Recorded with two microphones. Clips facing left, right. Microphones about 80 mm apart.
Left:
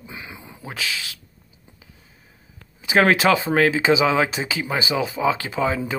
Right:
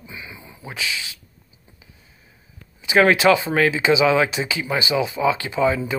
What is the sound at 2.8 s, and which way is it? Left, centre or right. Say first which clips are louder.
Speech: right 1 dB; left.